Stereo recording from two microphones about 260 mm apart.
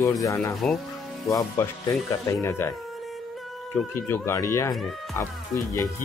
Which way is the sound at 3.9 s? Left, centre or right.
Centre.